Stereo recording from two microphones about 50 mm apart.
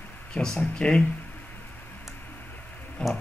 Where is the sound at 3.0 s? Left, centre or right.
Centre.